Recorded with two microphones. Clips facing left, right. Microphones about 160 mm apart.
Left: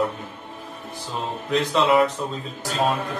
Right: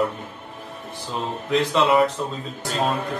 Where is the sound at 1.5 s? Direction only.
Centre (ahead or behind).